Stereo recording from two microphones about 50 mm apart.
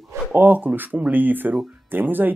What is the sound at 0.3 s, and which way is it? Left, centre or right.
Speech, right.